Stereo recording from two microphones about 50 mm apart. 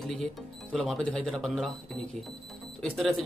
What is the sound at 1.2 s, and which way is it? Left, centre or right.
Speech, centre.